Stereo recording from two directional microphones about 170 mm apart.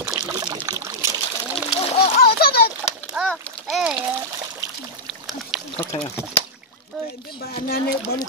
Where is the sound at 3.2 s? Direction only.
10° right (ahead or behind).